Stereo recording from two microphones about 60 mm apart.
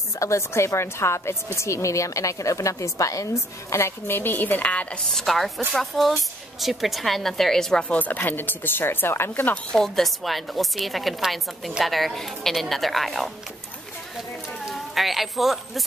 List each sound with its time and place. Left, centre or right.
0.2 s a woman's voice: left
4.1 s speech: left
5.1 s speech: centre
7.9 s speech: left
9.3 s speech: left
9.7 s speech: centre
14.7 s a woman's voice: centre